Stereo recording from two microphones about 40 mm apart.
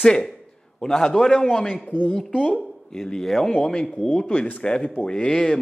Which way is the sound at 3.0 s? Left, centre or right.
Centre.